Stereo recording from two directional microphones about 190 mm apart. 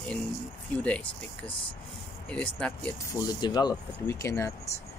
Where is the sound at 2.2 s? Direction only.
5° left (ahead or behind).